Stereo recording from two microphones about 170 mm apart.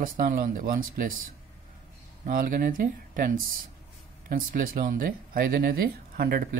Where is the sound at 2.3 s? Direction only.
55° right (ahead or behind).